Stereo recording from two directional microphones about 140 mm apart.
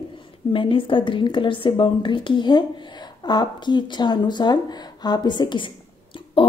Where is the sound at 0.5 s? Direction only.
40° left (ahead or behind).